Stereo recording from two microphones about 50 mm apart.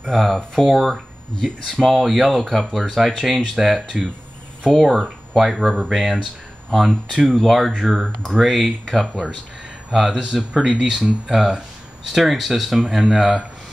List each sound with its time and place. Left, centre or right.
0.1 s speech: centre
7.2 s speech: centre
7.4 s speech: centre
10.1 s speech: centre